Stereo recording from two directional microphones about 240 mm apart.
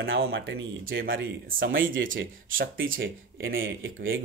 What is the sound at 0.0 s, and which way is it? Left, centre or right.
Speech, right.